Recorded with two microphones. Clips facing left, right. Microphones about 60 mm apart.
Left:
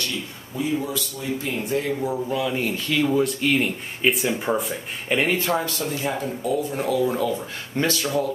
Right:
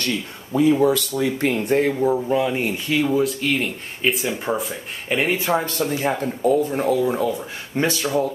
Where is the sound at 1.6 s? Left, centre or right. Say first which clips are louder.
Right 5 dB; right.